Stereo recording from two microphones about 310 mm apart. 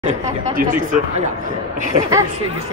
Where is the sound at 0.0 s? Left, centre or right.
Centre.